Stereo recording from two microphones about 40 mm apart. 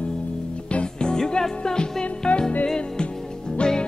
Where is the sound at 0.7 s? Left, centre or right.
Left.